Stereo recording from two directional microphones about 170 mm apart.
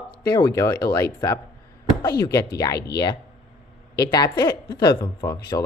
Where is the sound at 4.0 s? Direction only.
25° left (ahead or behind).